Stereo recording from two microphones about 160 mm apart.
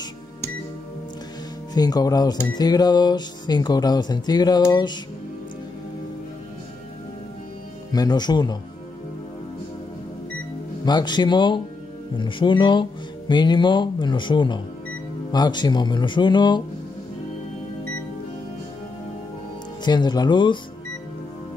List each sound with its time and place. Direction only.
1.7 s speech: 25° left (ahead or behind)
7.9 s speech: 25° left (ahead or behind)
10.9 s speech: 25° left (ahead or behind)
19.8 s speech: 25° left (ahead or behind)